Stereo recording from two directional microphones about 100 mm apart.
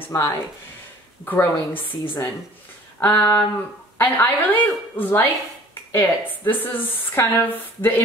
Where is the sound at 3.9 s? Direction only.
20° left (ahead or behind).